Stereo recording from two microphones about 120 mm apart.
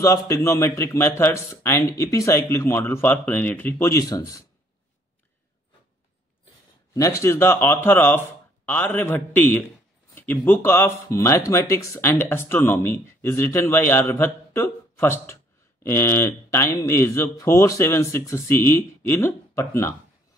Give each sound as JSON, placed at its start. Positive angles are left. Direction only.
{"t": 0.0, "sound": "speech", "side_deg": 25}
{"t": 6.9, "sound": "a man's voice", "side_deg": 25}